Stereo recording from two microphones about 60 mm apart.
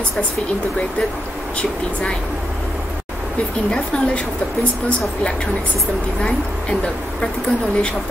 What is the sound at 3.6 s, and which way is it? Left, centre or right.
Speech, centre.